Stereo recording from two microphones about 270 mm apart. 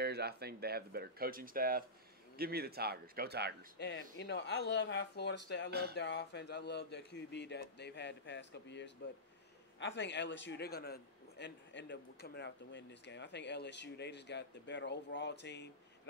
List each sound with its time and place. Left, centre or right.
0.0 s speech: right
3.7 s a man's voice: left
5.7 s speech: right
5.9 s a man's voice: left